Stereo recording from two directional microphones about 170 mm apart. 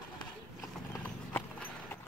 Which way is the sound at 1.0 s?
10° left (ahead or behind).